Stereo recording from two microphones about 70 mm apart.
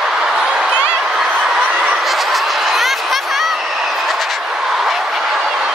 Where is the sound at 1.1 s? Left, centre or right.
Centre.